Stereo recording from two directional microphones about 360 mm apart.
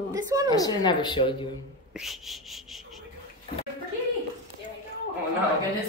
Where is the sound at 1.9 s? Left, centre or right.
Centre.